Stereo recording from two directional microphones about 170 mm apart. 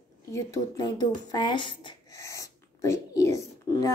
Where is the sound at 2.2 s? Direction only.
20° left (ahead or behind).